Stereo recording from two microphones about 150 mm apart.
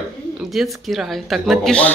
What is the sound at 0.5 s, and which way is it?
Speech, centre (ahead or behind).